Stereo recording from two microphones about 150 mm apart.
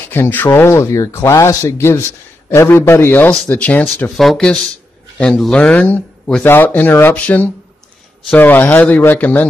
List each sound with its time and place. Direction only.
0.1 s speech: 10° left (ahead or behind)